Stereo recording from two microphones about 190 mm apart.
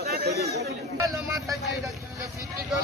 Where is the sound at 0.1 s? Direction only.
60° right (ahead or behind).